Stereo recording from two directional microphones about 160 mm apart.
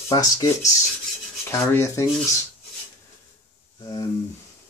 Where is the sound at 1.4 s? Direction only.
15° left (ahead or behind).